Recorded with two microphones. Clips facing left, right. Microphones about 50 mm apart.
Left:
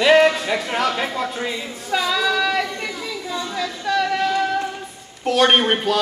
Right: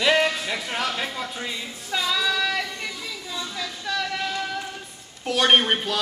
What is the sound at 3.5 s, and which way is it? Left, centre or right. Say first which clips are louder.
Music: left 8 dB; centre.